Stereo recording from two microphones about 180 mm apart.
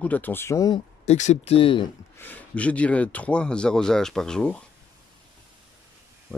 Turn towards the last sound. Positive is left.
turn(degrees=5)  # may be behind; listen again after turning